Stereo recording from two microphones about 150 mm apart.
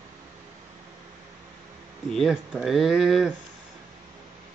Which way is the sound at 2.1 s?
Centre (ahead or behind).